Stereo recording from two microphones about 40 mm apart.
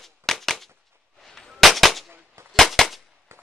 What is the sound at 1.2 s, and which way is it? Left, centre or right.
Gunshot, centre.